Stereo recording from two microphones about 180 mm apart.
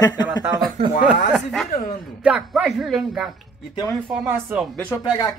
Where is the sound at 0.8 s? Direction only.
35° right (ahead or behind).